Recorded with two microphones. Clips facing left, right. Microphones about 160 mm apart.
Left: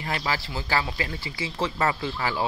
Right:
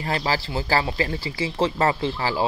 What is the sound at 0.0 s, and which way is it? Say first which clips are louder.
Speech: right 4 dB; 35° right (ahead or behind).